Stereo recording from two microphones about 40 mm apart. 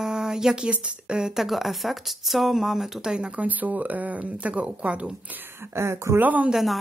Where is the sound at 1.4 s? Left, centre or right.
Centre.